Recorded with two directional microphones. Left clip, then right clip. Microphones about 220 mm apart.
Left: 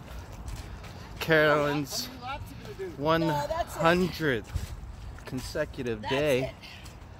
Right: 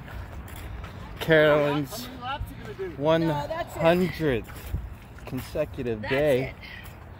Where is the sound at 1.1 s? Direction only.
15° right (ahead or behind).